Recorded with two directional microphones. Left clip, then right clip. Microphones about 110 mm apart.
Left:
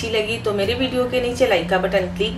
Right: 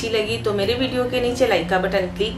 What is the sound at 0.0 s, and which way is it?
A woman's voice, 5° right (ahead or behind).